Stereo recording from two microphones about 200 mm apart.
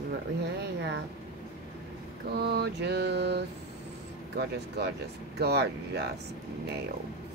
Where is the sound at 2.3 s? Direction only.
55° right (ahead or behind).